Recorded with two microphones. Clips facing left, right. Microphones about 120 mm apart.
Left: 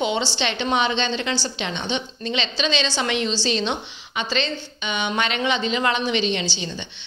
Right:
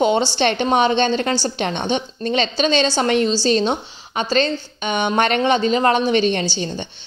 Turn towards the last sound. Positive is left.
turn(degrees=-45)  # may be behind; listen again after turning